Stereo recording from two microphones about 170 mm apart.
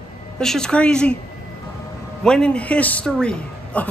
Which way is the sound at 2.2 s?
5° left (ahead or behind).